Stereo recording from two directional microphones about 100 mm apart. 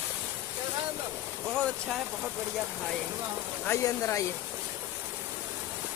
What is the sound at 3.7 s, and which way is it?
Speech, 30° left (ahead or behind).